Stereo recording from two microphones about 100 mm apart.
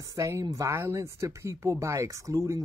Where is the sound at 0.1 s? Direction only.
35° right (ahead or behind).